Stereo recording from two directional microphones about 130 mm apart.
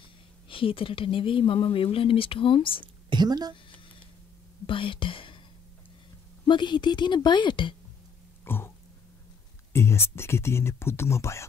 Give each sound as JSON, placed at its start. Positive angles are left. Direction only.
{"t": 0.5, "sound": "speech", "side_deg": 45}
{"t": 3.1, "sound": "a woman's voice", "side_deg": -35}
{"t": 4.6, "sound": "speech", "side_deg": 40}
{"t": 6.4, "sound": "a woman's voice", "side_deg": 35}
{"t": 8.5, "sound": "a sound", "side_deg": 15}
{"t": 9.7, "sound": "speech", "side_deg": 20}